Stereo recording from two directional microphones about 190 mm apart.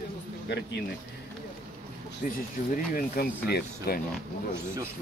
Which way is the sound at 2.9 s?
50° left (ahead or behind).